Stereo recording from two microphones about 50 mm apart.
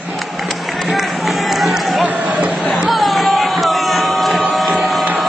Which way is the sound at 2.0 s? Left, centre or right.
Right.